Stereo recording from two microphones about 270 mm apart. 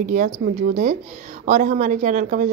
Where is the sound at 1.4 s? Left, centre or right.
Right.